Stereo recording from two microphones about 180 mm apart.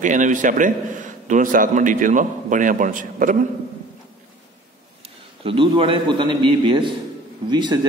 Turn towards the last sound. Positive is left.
turn(degrees=-25)  # may be behind; listen again after turning